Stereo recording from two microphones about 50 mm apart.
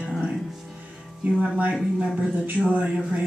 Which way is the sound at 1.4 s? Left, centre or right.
Right.